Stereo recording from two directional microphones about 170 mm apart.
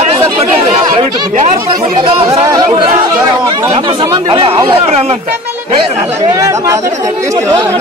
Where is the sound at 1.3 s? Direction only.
40° right (ahead or behind).